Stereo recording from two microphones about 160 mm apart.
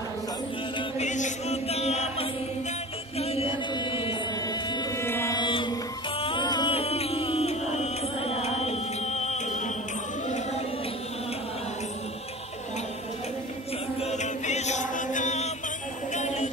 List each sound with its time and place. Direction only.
0.7 s chant: 45° left (ahead or behind)
3.2 s music: 40° left (ahead or behind)
5.0 s mantra: 15° left (ahead or behind)
5.4 s music: 30° left (ahead or behind); by 9.7 s 45° left (ahead or behind)
10.2 s a sound: 45° left (ahead or behind)
13.9 s music: 45° left (ahead or behind)